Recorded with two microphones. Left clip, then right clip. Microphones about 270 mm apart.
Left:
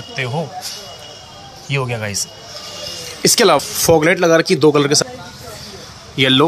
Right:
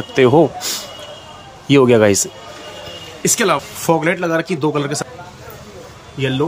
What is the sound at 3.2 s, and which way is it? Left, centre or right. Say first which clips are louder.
Speech: left 4 dB; centre.